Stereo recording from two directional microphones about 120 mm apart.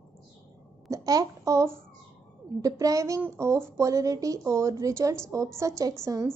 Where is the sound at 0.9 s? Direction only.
30° right (ahead or behind).